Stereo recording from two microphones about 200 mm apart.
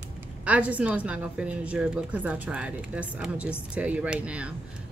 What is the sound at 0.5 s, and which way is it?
A woman's voice, 5° right (ahead or behind).